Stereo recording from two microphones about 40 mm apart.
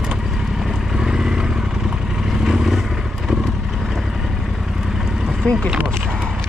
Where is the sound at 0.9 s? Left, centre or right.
Centre.